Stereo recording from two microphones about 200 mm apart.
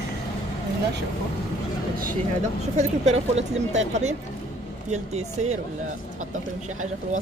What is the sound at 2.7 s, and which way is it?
Speech, 35° right (ahead or behind).